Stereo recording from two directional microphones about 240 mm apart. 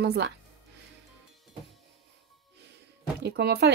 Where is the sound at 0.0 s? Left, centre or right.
Right.